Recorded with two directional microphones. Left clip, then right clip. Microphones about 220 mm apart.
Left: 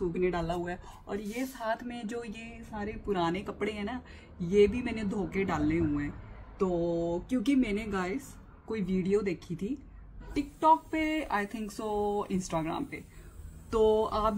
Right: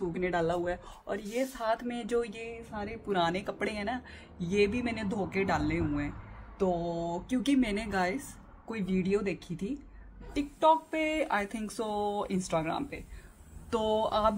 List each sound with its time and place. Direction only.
0.1 s speech: 20° right (ahead or behind)